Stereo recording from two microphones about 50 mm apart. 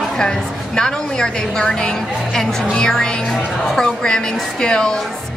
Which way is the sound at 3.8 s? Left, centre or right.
Centre.